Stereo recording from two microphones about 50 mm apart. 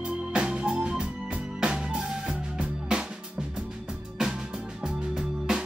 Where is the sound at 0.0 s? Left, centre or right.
Centre.